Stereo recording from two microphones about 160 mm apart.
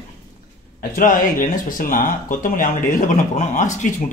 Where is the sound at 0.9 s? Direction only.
55° left (ahead or behind).